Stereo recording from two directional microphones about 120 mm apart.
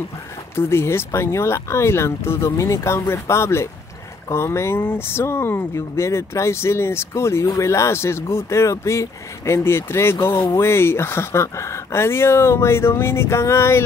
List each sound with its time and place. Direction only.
0.6 s speech: 20° left (ahead or behind)